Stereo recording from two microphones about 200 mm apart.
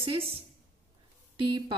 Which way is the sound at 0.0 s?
25° right (ahead or behind).